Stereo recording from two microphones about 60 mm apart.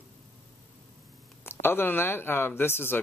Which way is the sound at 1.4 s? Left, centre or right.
Left.